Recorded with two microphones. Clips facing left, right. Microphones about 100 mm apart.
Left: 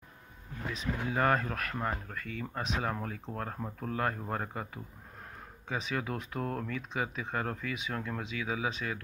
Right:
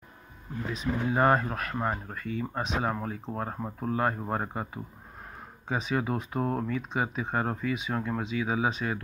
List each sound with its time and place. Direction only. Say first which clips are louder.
1.0 s speech: right 5 dB; 25° right (ahead or behind)
5.7 s speech: right 5 dB; 35° right (ahead or behind)
5.9 s speech: right 6 dB; 25° right (ahead or behind)